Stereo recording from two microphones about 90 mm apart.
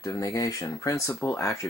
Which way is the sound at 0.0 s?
40° left (ahead or behind).